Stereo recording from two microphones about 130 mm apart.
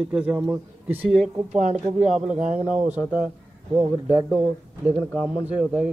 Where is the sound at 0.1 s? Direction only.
10° right (ahead or behind).